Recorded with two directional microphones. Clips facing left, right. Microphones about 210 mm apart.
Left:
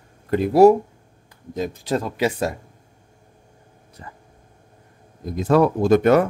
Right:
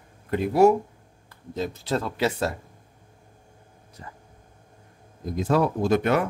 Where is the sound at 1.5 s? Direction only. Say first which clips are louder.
Left 3 dB; 15° left (ahead or behind).